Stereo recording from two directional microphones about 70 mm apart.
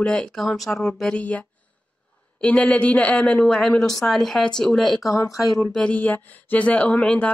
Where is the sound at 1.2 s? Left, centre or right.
Left.